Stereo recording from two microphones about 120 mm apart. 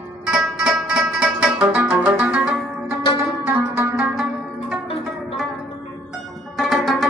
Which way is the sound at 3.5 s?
20° right (ahead or behind).